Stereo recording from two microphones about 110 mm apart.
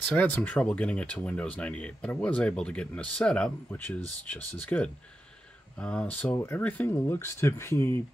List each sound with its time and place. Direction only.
0.0 s speech: 15° left (ahead or behind)